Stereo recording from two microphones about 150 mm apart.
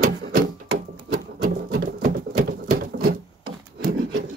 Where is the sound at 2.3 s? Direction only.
75° right (ahead or behind).